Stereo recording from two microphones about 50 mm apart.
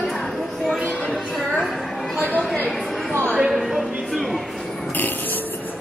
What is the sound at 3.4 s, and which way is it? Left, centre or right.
Speech, centre.